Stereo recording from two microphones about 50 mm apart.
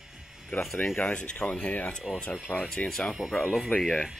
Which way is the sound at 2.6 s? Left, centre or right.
Left.